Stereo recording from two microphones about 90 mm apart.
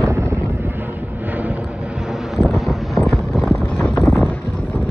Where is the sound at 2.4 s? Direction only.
Centre (ahead or behind); by 4.8 s 15° left (ahead or behind).